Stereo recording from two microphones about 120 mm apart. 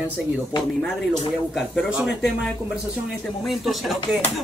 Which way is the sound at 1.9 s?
5° right (ahead or behind).